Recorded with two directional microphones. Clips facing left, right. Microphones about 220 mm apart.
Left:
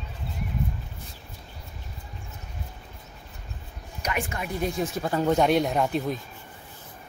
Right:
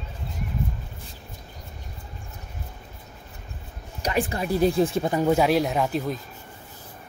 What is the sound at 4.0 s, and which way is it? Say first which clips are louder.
Speech: right 5 dB; 35° right (ahead or behind).